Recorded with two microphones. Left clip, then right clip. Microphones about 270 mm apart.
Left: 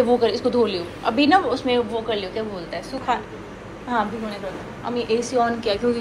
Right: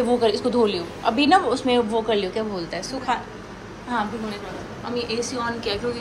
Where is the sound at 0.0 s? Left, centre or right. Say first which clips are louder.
Left 2 dB; centre.